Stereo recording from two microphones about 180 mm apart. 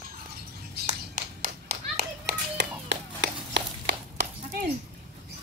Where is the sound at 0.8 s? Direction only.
45° right (ahead or behind); by 4.6 s 70° right (ahead or behind).